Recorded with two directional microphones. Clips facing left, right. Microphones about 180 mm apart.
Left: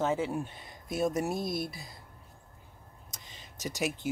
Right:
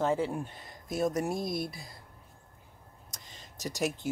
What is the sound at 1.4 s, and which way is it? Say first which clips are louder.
Speech: even; centre (ahead or behind).